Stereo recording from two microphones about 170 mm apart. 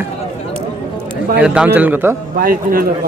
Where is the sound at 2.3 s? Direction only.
60° right (ahead or behind).